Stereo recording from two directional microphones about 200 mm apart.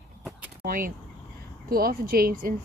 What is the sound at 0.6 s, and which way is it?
Speech, 45° right (ahead or behind).